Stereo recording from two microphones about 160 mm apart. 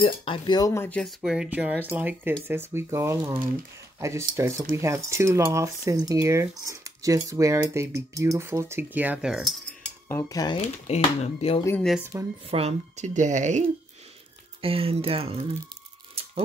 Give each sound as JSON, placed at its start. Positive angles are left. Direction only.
{"t": 0.0, "sound": "speech", "side_deg": 35}
{"t": 0.8, "sound": "speech", "side_deg": 5}
{"t": 10.0, "sound": "speech", "side_deg": 15}
{"t": 10.6, "sound": "speech", "side_deg": 40}
{"t": 12.0, "sound": "speech", "side_deg": -15}
{"t": 12.4, "sound": "speech", "side_deg": -40}
{"t": 14.6, "sound": "speech", "side_deg": -35}